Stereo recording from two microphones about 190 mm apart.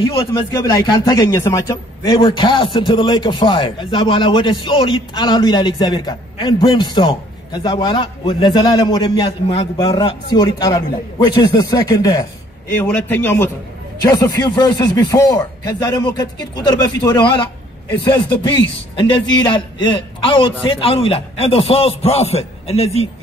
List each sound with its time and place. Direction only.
0.0 s a man's voice: 20° left (ahead or behind)